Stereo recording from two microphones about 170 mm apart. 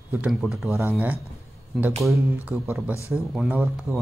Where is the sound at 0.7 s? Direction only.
15° right (ahead or behind).